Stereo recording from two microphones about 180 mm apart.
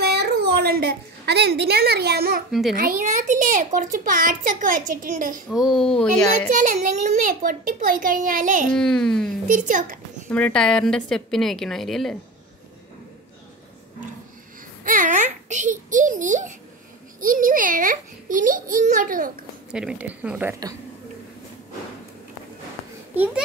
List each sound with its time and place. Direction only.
0.0 s a woman's voice: 65° right (ahead or behind)
2.8 s a child's voice: 45° right (ahead or behind)
5.5 s a woman's voice: centre (ahead or behind)
6.5 s a child's voice: 50° right (ahead or behind)
8.7 s a woman's voice: 5° left (ahead or behind)
9.5 s a child's voice: 45° right (ahead or behind)
10.3 s a woman's voice: 5° left (ahead or behind)
14.9 s a child's voice: 50° right (ahead or behind)
19.7 s a woman's voice: 5° right (ahead or behind)
23.1 s a woman's voice: 10° right (ahead or behind)